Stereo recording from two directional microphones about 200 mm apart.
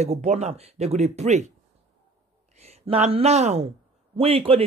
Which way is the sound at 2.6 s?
30° right (ahead or behind).